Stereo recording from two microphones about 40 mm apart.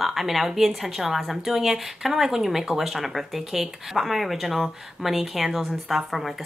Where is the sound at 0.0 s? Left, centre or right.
Centre.